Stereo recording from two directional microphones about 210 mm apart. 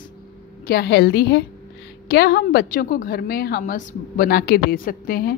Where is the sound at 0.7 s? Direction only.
50° left (ahead or behind).